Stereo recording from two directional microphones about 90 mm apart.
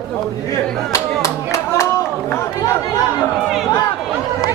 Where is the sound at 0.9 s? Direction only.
35° left (ahead or behind).